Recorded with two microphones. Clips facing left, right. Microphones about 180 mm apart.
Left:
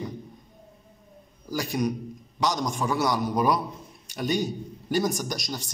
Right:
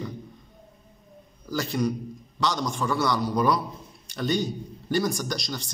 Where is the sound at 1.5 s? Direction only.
15° left (ahead or behind).